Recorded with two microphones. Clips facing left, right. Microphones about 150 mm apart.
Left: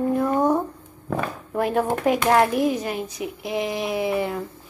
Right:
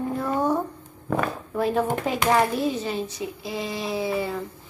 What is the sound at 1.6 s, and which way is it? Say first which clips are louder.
Speech: left 1 dB; 10° left (ahead or behind).